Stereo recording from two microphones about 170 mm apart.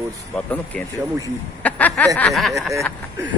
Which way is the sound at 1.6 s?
10° left (ahead or behind).